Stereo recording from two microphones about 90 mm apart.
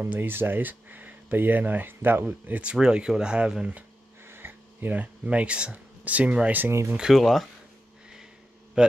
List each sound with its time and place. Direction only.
0.0 s speech: 25° right (ahead or behind)
4.3 s speech: 25° right (ahead or behind)
6.7 s speech: 30° right (ahead or behind)
7.0 s speech: 5° right (ahead or behind)
8.8 s a man's voice: 10° right (ahead or behind)